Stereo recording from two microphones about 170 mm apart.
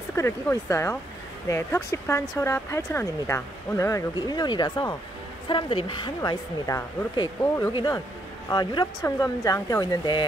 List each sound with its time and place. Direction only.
0.1 s speech: 15° left (ahead or behind)